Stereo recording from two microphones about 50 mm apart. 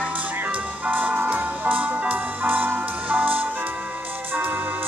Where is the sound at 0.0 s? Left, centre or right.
Right.